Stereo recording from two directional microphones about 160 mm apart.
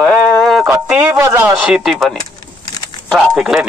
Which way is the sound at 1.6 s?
5° right (ahead or behind).